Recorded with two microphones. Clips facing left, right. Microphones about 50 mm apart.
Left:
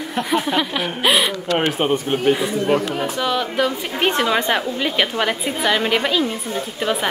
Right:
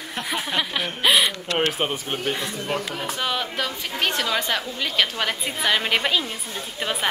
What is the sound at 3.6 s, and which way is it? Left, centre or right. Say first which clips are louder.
A woman's voice: left 6 dB; centre.